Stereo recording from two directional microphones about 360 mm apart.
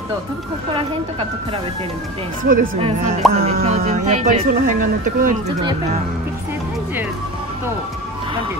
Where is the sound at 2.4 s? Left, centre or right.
Right.